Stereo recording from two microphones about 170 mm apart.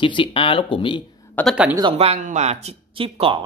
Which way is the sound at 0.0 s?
30° left (ahead or behind).